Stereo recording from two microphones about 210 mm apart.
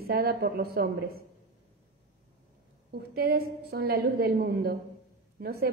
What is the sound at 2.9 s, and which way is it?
A woman's voice, 45° right (ahead or behind).